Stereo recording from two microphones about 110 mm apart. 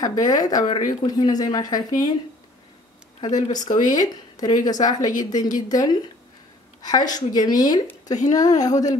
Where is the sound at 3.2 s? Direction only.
35° left (ahead or behind).